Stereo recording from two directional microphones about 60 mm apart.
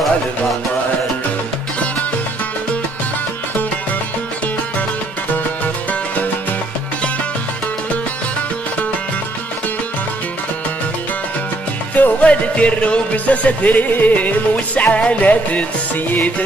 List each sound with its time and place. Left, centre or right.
11.9 s music: left